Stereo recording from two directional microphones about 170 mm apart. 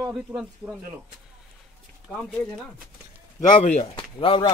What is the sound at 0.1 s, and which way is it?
Speech, 5° right (ahead or behind).